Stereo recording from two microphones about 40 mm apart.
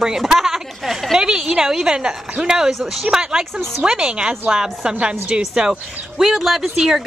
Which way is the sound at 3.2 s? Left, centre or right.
Centre.